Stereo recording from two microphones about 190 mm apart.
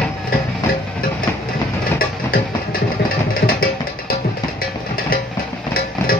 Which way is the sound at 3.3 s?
50° left (ahead or behind).